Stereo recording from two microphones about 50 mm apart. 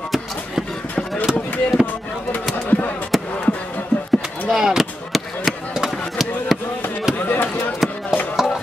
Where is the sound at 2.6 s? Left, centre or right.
Left.